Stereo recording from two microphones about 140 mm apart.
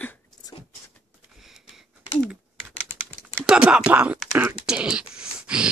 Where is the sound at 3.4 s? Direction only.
5° right (ahead or behind).